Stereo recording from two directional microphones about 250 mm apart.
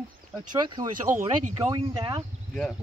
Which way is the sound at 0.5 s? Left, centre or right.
Centre.